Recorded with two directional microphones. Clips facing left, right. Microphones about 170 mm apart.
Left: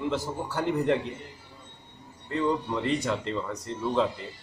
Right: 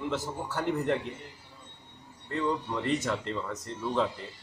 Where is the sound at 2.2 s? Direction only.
15° left (ahead or behind).